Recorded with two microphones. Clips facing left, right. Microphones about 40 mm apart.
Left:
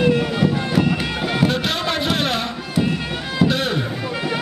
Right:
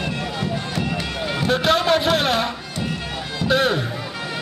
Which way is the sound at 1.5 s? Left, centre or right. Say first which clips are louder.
Right 4 dB; centre.